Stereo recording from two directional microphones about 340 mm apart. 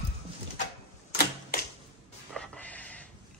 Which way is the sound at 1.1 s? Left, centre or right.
Left.